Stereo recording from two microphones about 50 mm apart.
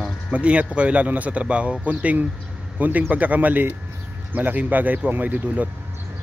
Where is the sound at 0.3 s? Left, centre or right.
Right.